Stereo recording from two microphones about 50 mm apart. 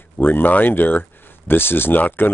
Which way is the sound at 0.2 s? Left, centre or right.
Left.